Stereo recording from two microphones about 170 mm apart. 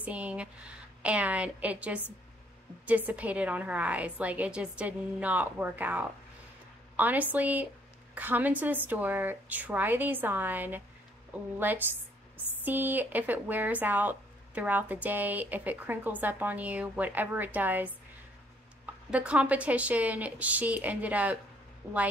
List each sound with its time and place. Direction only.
0.0 s speech: 10° right (ahead or behind)
19.0 s speech: 5° right (ahead or behind)